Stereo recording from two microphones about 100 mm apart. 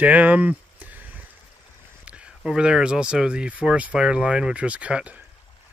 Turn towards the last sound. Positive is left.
turn(degrees=-10)  # may be behind; listen again after turning